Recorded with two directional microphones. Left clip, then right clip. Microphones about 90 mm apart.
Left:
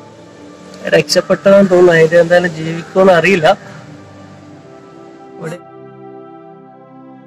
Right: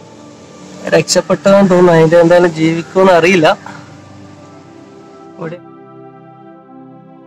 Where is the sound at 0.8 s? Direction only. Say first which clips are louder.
Even; 35° right (ahead or behind).